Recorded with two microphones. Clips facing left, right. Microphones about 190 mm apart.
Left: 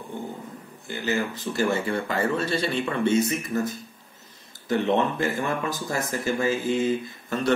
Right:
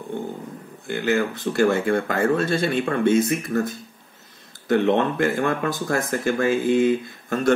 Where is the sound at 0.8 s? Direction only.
55° right (ahead or behind).